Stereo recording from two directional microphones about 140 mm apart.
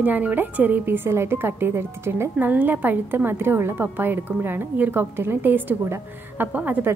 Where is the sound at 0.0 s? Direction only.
10° right (ahead or behind).